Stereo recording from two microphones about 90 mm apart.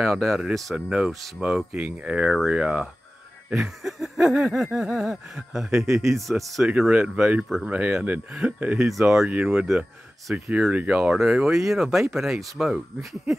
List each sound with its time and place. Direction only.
0.0 s speech: 5° right (ahead or behind)
6.7 s speech: 10° right (ahead or behind)
7.4 s speech: centre (ahead or behind)
7.7 s speech: 15° right (ahead or behind)
8.7 s speech: 5° right (ahead or behind)